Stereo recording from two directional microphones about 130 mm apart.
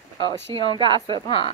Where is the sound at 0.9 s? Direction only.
40° right (ahead or behind).